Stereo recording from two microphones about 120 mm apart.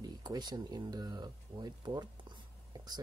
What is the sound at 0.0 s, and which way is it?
Speech, 30° right (ahead or behind).